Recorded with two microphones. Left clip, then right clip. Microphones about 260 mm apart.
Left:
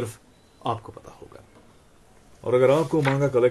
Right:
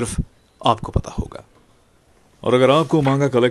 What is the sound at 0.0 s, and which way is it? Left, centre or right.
Speech, right.